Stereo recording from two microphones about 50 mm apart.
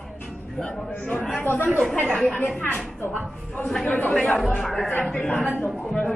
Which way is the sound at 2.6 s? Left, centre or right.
Left.